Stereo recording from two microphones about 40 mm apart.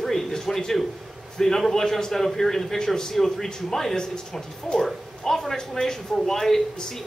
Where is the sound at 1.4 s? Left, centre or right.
Centre.